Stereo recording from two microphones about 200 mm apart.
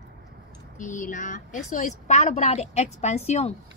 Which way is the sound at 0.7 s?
40° left (ahead or behind).